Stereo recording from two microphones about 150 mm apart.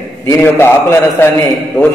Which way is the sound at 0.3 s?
15° left (ahead or behind).